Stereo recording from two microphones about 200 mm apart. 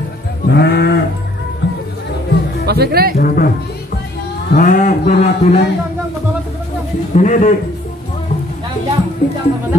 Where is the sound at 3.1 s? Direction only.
45° left (ahead or behind).